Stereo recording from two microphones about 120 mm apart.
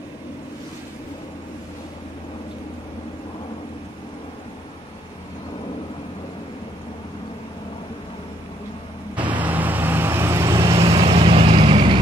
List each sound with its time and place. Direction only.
9.4 s vehicle: 15° right (ahead or behind)
10.7 s vehicle: 55° right (ahead or behind)